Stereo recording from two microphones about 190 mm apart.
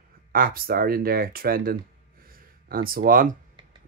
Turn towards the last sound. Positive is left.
turn(degrees=-45)  # may be behind; listen again after turning